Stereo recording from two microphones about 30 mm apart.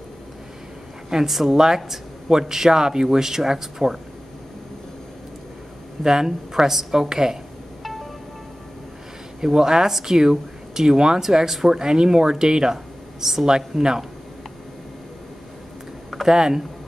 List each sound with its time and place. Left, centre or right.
1.3 s speech: centre
2.2 s speech: centre
6.0 s speech: centre
7.8 s music: centre
9.4 s speech: centre
16.3 s speech: right